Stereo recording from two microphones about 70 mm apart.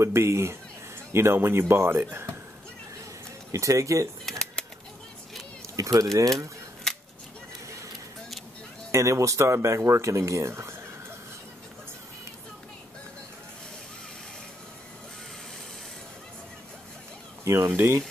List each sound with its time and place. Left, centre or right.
0.0 s speech: right
3.5 s speech: right
4.3 s typewriter: centre
5.8 s a sound: right
6.9 s scissors: centre
8.9 s speech: right
17.5 s speech: right